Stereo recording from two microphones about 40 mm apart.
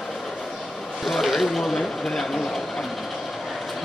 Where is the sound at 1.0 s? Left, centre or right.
Centre.